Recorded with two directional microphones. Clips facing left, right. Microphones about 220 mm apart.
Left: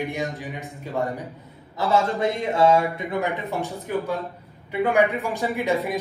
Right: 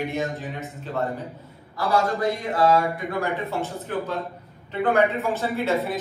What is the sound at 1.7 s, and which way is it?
A man's voice, 25° left (ahead or behind).